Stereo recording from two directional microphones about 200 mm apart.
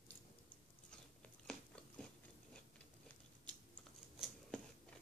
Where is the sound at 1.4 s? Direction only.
5° left (ahead or behind).